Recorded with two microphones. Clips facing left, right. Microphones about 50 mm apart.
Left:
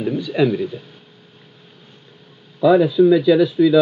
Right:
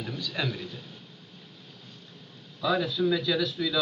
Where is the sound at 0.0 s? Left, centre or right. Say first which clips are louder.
Left 14 dB; left.